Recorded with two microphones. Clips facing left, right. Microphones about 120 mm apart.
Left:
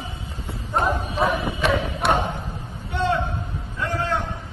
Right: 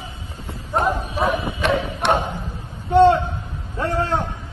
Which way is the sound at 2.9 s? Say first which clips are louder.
Right 11 dB; 30° right (ahead or behind).